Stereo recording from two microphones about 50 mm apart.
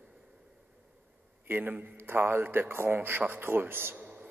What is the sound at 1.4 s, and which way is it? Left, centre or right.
A man's voice, right.